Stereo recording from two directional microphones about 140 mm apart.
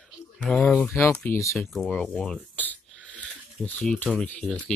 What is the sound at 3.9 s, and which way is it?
Speech, 5° left (ahead or behind).